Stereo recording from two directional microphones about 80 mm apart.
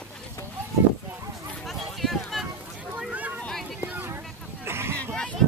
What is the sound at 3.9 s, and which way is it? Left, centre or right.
Vehicle, right.